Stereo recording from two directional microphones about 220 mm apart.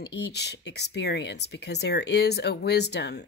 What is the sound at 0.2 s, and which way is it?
Speech, 50° left (ahead or behind).